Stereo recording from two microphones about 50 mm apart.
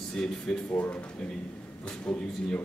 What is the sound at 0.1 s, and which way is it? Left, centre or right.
Speech, centre.